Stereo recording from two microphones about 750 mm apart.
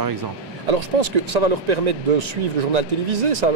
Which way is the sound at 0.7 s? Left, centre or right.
Right.